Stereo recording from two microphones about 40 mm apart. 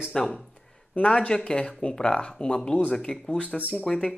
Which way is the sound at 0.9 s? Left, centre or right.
Left.